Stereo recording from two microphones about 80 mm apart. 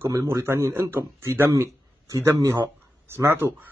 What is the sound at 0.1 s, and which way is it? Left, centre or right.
Speech, right.